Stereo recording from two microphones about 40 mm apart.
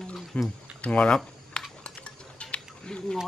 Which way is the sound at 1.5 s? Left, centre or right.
Left.